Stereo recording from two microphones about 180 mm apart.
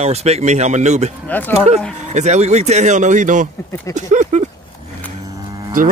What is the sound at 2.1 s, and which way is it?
Speech, 40° right (ahead or behind).